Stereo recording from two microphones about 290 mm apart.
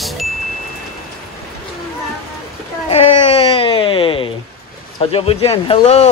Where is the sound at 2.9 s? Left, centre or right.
Centre.